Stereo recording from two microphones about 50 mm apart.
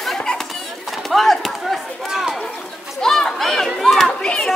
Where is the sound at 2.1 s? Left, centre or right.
Centre.